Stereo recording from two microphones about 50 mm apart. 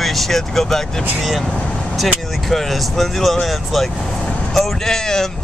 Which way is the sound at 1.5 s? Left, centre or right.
Left.